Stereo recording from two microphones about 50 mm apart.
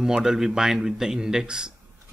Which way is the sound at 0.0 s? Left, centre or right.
Centre.